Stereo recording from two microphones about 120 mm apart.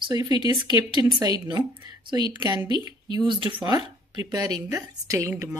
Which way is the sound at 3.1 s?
40° right (ahead or behind).